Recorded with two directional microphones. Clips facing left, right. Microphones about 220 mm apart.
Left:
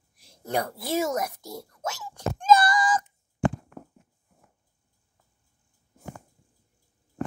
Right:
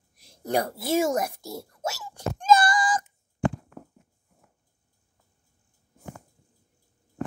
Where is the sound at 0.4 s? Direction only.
35° right (ahead or behind).